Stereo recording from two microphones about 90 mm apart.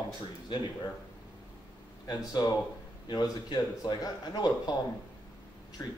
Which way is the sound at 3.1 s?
50° left (ahead or behind).